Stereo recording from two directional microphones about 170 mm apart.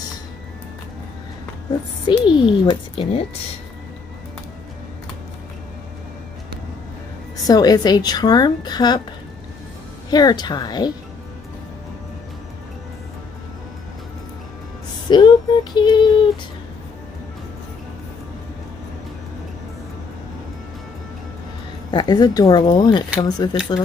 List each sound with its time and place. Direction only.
2.0 s a woman's voice: 25° left (ahead or behind)
7.4 s a woman's voice: 20° left (ahead or behind)
10.1 s a woman's voice: 25° left (ahead or behind)
15.0 s a woman's voice: 25° left (ahead or behind)
21.9 s a woman's voice: 25° left (ahead or behind)